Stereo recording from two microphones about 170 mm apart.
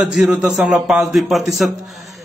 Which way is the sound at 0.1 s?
5° right (ahead or behind).